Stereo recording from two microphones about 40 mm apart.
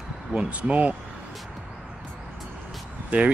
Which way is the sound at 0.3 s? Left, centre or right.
Right.